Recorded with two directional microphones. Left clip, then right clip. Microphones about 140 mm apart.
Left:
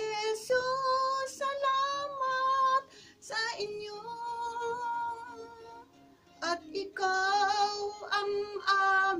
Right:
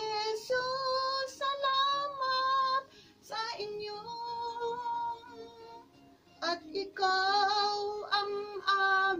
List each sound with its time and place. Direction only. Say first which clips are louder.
0.0 s child singing: left 1 dB; 30° left (ahead or behind)
3.3 s female singing: left 3 dB; 10° left (ahead or behind)
6.4 s child singing: left 1 dB; 30° left (ahead or behind); by 9.1 s 10° left (ahead or behind)